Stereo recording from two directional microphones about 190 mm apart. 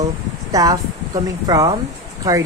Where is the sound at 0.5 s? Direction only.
20° right (ahead or behind).